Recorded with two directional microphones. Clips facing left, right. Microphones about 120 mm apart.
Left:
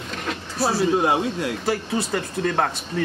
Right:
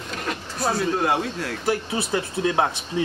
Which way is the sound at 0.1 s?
Centre (ahead or behind).